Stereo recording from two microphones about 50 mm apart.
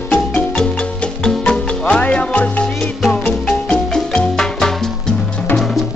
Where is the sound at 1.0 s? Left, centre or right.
Centre.